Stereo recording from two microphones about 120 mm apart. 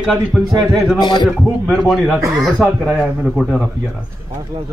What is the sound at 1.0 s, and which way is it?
Speech, 40° left (ahead or behind).